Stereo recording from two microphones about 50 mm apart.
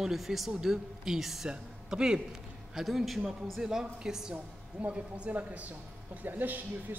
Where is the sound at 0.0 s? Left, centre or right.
Centre.